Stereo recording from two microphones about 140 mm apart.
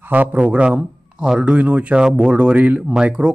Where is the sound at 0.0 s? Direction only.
15° right (ahead or behind).